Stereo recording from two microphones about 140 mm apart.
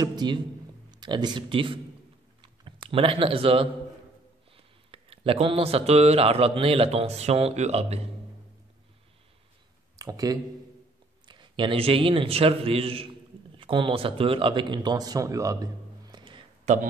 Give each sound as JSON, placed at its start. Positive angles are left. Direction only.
{"t": 0.0, "sound": "a man's voice", "side_deg": -30}
{"t": 2.4, "sound": "computer keyboard", "side_deg": -35}
{"t": 4.6, "sound": "speech", "side_deg": -40}
{"t": 9.9, "sound": "a man's voice", "side_deg": -25}
{"t": 16.7, "sound": "speech", "side_deg": -55}